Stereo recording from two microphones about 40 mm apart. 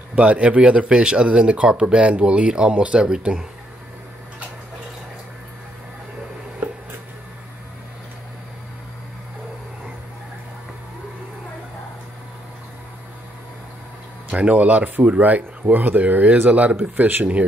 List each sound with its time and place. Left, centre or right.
0.1 s speech: right
6.6 s a sound: right
14.3 s speech: right